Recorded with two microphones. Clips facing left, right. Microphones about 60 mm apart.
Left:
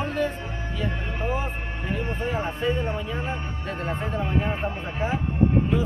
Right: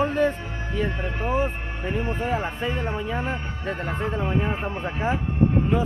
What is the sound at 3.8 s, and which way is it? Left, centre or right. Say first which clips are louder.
Speech: even; centre.